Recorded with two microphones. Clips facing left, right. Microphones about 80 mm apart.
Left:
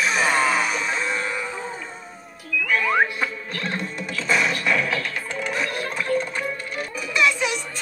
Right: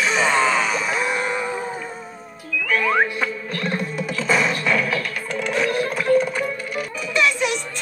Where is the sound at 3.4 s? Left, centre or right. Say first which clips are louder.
Right 3 dB; centre.